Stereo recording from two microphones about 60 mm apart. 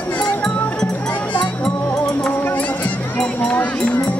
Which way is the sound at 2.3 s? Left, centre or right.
Left.